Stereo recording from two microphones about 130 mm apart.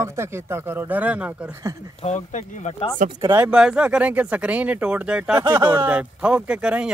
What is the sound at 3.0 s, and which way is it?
Speech, 70° right (ahead or behind).